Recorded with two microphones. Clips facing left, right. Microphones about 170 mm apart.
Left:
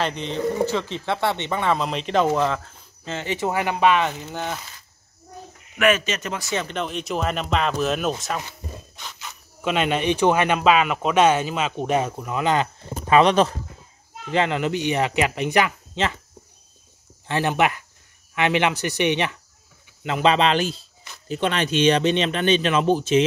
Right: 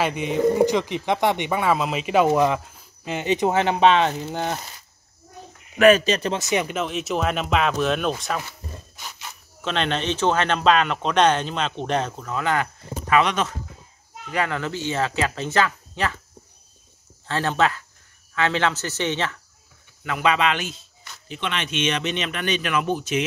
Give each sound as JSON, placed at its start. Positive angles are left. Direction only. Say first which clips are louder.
{"t": 0.0, "sound": "speech", "louder": "right 4 dB", "side_deg": -10}
{"t": 5.8, "sound": "speech", "louder": "right 5 dB", "side_deg": -35}
{"t": 6.4, "sound": "speech", "louder": "right 3 dB", "side_deg": -15}
{"t": 6.8, "sound": "speech", "louder": "right 1 dB", "side_deg": 0}
{"t": 9.6, "sound": "a man's voice", "louder": "left 3 dB", "side_deg": 10}
{"t": 13.1, "sound": "speech", "louder": "left 5 dB", "side_deg": 30}
{"t": 14.3, "sound": "a man's voice", "louder": "left 4 dB", "side_deg": 20}
{"t": 17.3, "sound": "a man's voice", "louder": "left 1 dB", "side_deg": 15}